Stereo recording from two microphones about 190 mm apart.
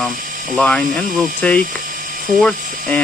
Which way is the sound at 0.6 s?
5° left (ahead or behind).